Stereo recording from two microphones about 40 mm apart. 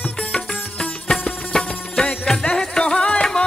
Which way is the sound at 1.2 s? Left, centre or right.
Left.